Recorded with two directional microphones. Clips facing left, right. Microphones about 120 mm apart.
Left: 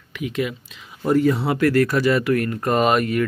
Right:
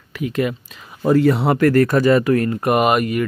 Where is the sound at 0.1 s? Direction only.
40° right (ahead or behind).